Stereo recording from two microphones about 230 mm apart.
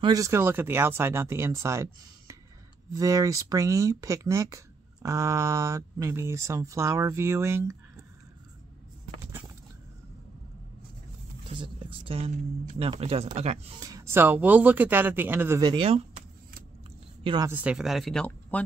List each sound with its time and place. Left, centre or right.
0.0 s speech: centre
11.4 s speech: right
13.7 s speech: centre
17.5 s speech: centre